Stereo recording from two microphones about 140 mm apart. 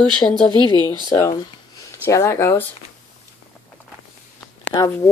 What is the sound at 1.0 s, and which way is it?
Speech, 20° left (ahead or behind).